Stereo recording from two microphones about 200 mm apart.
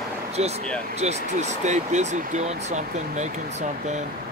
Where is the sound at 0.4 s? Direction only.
35° right (ahead or behind).